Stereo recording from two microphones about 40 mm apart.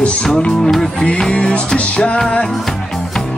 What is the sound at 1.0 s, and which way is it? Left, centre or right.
Music, centre.